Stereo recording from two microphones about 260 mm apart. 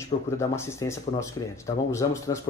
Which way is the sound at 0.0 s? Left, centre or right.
Centre.